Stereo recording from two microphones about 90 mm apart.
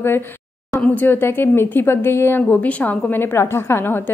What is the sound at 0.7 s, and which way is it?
A woman's voice, 20° left (ahead or behind).